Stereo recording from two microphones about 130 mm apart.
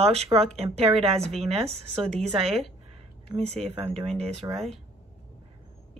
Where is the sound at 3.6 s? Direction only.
50° right (ahead or behind).